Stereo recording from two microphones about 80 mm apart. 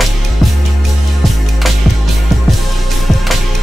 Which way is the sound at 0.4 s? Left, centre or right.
Centre.